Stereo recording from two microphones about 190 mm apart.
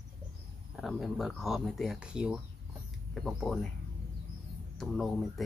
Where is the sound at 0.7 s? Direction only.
Centre (ahead or behind).